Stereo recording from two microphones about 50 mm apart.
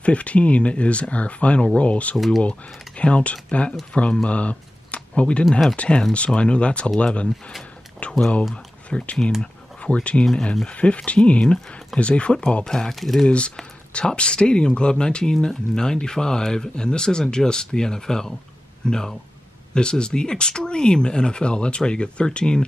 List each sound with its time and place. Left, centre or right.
0.0 s speech: left
2.1 s speech: centre
3.0 s speech: left; by 13.3 s centre
13.3 s speech: left